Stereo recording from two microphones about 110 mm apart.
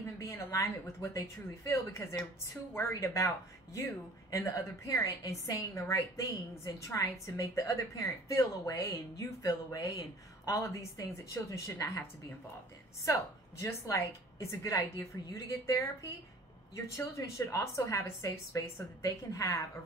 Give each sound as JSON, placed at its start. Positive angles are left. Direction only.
{"t": 0.2, "sound": "a woman's voice", "side_deg": 25}
{"t": 13.0, "sound": "a woman's voice", "side_deg": 25}